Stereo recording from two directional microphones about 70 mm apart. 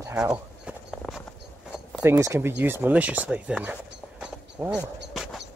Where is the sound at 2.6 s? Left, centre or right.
Right.